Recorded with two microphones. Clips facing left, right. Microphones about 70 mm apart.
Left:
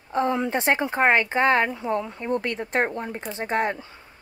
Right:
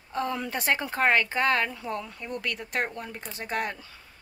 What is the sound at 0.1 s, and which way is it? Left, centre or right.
Speech, left.